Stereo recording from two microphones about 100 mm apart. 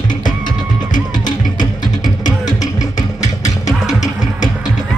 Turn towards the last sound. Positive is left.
turn(degrees=40)  # may be behind; listen again after turning